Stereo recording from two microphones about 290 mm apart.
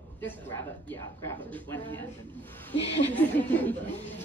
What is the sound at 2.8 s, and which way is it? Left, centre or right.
Speech, centre.